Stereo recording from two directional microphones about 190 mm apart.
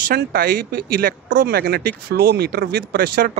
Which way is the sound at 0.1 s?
50° right (ahead or behind).